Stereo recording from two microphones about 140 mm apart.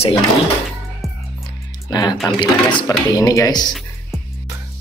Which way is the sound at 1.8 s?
30° left (ahead or behind).